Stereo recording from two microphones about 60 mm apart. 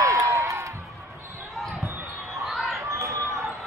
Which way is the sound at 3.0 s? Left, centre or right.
Right.